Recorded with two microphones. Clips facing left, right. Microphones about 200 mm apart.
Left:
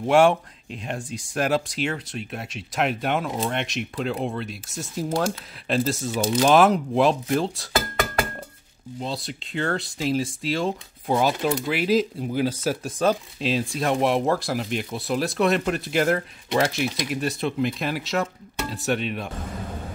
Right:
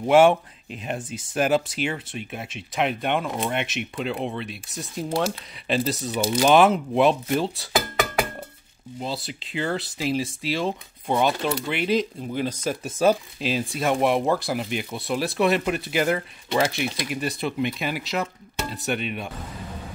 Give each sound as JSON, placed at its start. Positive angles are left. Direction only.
{"t": 0.0, "sound": "speech", "side_deg": -5}
{"t": 9.0, "sound": "speech", "side_deg": 0}
{"t": 13.0, "sound": "speech", "side_deg": -5}